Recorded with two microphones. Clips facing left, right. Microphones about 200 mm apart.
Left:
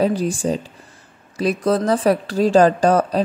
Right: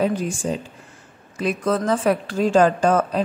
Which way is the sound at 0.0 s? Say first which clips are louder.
Left 3 dB; 35° left (ahead or behind).